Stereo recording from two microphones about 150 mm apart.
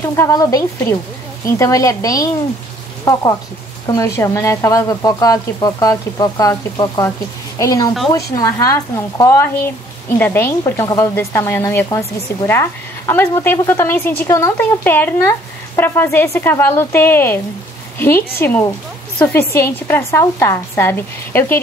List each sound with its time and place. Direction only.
0.1 s a woman's voice: 20° left (ahead or behind)